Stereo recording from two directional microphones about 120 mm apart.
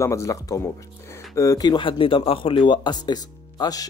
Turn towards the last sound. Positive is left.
turn(degrees=35)  # may be behind; listen again after turning